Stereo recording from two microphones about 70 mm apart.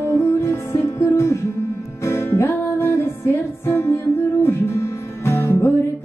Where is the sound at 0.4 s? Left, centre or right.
Left.